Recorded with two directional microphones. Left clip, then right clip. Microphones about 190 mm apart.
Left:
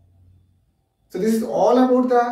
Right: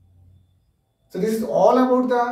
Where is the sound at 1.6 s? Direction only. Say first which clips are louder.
Even; 20° left (ahead or behind).